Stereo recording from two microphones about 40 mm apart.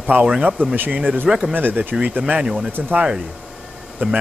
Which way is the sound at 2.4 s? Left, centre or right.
Centre.